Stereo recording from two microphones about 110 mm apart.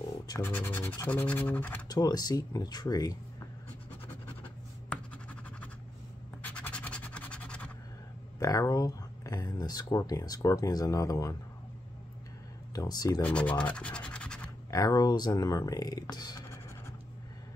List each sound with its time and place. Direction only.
0.4 s scratch: 15° left (ahead or behind)
1.9 s speech: 35° left (ahead or behind)
4.4 s scratch: 15° left (ahead or behind)
8.4 s speech: 30° left (ahead or behind)
12.7 s speech: 35° left (ahead or behind)
13.2 s speech: 10° left (ahead or behind)
14.7 s speech: 35° left (ahead or behind)